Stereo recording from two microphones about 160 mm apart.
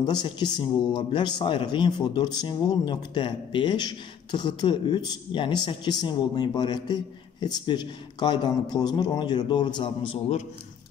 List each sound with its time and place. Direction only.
0.0 s speech: 25° left (ahead or behind)